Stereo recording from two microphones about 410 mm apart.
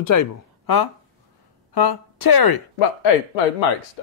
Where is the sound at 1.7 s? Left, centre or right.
Left.